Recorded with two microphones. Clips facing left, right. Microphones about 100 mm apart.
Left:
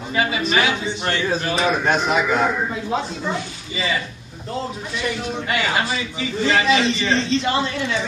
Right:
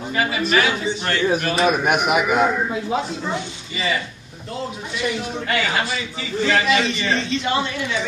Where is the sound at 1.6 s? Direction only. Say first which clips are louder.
Right 1 dB; 15° right (ahead or behind).